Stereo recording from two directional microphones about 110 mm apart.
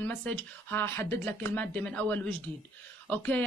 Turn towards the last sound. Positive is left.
turn(degrees=15)  # may be behind; listen again after turning